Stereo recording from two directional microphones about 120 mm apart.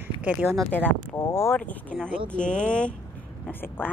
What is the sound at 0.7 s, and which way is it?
Speech, 15° left (ahead or behind).